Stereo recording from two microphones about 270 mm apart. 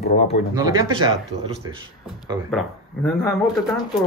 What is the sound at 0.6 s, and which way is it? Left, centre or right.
Speech, centre.